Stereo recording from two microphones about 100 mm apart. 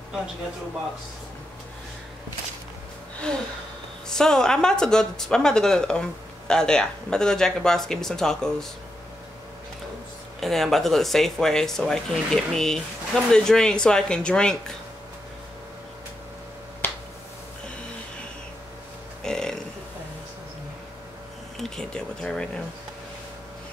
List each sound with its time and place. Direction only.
4.1 s speech: 5° left (ahead or behind)
10.4 s speech: centre (ahead or behind)
16.8 s finger snapping: 20° left (ahead or behind)
19.2 s burping: 5° left (ahead or behind)
21.5 s a sound: 5° left (ahead or behind)